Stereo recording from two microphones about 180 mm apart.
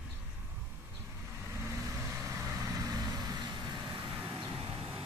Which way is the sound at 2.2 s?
15° right (ahead or behind).